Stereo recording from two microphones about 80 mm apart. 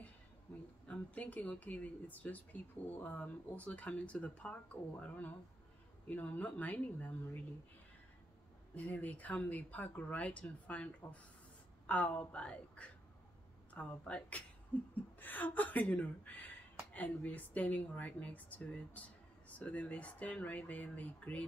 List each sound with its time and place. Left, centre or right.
0.8 s speech: centre
8.7 s a woman's voice: centre